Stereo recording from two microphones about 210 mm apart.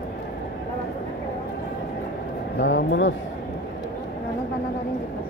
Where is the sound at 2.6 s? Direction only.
60° left (ahead or behind).